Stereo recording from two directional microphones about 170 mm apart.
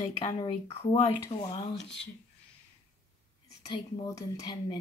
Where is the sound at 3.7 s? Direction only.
25° left (ahead or behind).